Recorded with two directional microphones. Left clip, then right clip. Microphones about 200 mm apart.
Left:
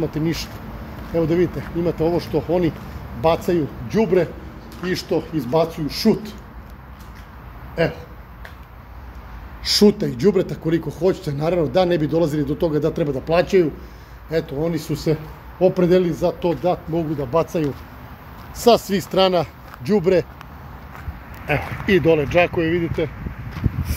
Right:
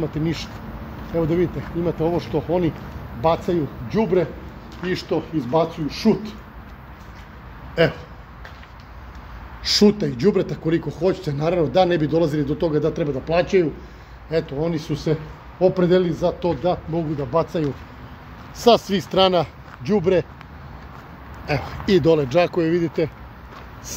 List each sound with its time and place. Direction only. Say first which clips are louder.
0.0 s speech: left 2 dB; 5° left (ahead or behind)
7.8 s a man's voice: right 2 dB; 35° right (ahead or behind)
9.6 s speech: left 1 dB; centre (ahead or behind)
21.5 s speech: left 2 dB; centre (ahead or behind)
21.9 s speech: left 1 dB; 10° right (ahead or behind)